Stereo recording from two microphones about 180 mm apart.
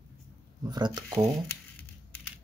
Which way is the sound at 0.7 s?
25° right (ahead or behind).